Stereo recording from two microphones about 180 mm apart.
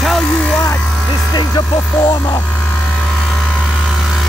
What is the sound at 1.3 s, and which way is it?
Speech, 25° left (ahead or behind).